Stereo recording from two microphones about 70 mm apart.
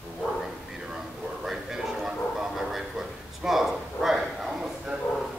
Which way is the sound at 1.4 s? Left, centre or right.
Centre.